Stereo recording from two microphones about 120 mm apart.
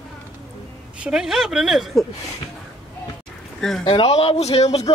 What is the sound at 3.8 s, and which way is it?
A man's voice, 45° left (ahead or behind).